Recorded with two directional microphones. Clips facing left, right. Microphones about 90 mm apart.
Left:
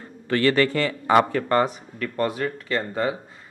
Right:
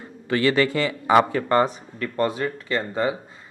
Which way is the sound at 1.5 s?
25° right (ahead or behind).